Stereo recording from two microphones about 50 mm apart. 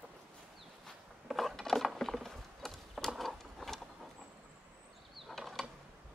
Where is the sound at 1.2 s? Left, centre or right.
Centre.